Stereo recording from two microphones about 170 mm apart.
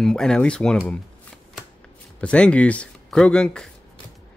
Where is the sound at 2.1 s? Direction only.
5° left (ahead or behind).